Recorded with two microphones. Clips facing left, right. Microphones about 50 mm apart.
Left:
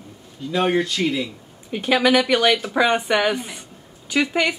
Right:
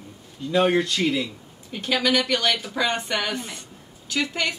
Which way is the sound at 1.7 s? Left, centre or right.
Centre.